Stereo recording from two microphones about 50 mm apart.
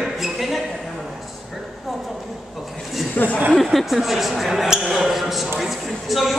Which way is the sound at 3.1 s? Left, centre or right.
Left.